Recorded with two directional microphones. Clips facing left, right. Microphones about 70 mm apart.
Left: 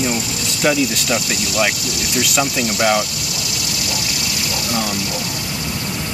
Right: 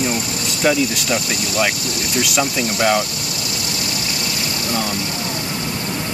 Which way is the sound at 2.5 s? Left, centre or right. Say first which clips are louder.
Even; right.